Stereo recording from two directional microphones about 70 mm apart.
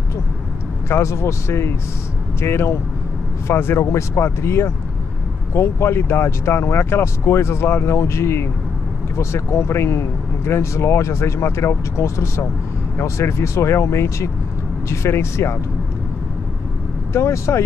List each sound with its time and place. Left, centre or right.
0.8 s speech: left
17.1 s speech: left